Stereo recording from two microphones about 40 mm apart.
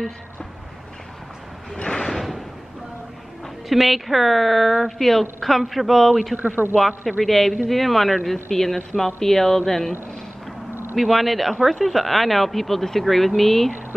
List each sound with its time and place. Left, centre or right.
1.8 s slam: left
2.0 s a sound: centre
3.6 s a woman's voice: centre
6.3 s speech: right
7.1 s a woman's voice: centre
11.0 s a woman's voice: centre